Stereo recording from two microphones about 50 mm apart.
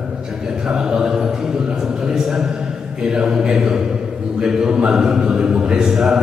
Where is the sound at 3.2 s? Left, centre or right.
Centre.